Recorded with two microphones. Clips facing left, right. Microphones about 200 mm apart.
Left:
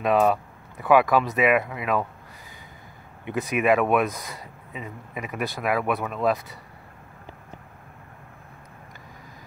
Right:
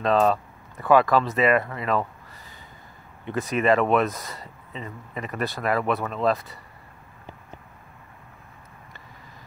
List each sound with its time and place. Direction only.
0.0 s speech: 10° left (ahead or behind)
3.4 s speech: 15° left (ahead or behind)
5.4 s speech: 15° left (ahead or behind)